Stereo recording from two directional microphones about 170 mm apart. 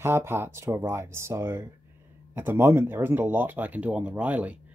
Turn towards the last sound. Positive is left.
turn(degrees=-10)  # may be behind; listen again after turning